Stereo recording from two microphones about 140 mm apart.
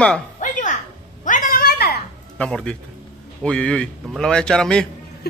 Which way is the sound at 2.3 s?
5° left (ahead or behind).